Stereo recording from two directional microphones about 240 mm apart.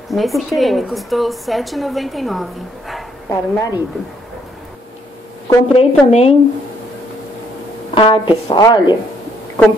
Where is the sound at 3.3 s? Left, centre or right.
Centre.